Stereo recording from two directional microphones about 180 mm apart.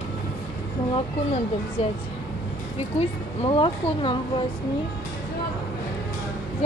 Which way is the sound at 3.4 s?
30° left (ahead or behind).